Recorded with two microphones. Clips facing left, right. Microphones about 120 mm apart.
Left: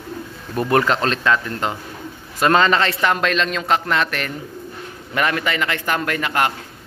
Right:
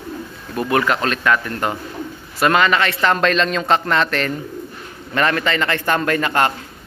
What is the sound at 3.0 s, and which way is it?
A man's voice, 5° left (ahead or behind).